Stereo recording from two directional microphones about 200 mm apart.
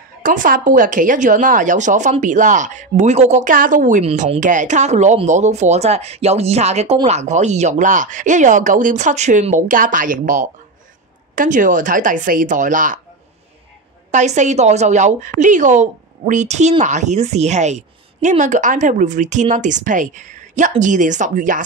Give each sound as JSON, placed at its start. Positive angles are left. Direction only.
{"t": 0.2, "sound": "a woman's voice", "side_deg": -40}
{"t": 14.1, "sound": "a woman's voice", "side_deg": -35}